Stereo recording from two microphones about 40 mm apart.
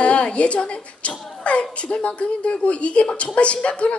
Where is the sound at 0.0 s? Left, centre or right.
Left.